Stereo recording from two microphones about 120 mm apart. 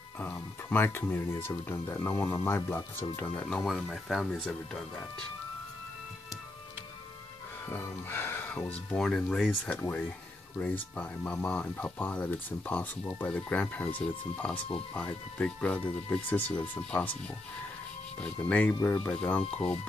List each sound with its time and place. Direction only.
0.2 s speech: 15° left (ahead or behind)
3.6 s speech: centre (ahead or behind)
7.6 s speech: 20° left (ahead or behind)
18.2 s speech: 10° left (ahead or behind)
19.5 s speech: 60° left (ahead or behind)